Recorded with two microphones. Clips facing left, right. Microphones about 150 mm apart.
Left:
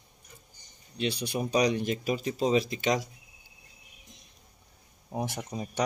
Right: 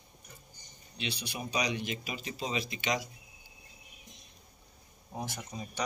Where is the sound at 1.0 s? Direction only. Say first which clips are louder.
Left 8 dB; 45° left (ahead or behind).